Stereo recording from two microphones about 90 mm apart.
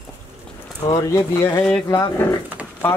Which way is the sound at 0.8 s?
40° left (ahead or behind).